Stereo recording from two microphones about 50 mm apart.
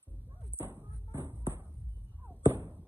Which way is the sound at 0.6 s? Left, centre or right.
Right.